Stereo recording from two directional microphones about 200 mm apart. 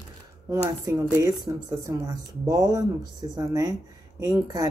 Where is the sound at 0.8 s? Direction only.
15° right (ahead or behind).